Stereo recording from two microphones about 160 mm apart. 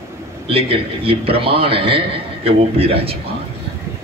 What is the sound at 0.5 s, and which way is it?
A man's voice, 35° right (ahead or behind).